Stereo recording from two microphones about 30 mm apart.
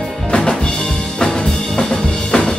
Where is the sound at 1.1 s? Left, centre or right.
Left.